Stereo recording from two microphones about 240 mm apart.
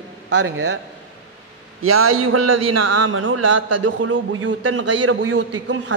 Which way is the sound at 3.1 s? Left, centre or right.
Right.